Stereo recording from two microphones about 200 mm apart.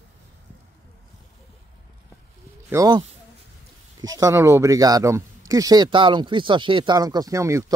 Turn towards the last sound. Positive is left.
turn(degrees=-15)  # may be behind; listen again after turning